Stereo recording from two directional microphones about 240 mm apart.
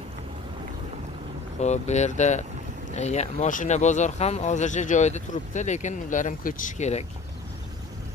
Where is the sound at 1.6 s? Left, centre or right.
Left.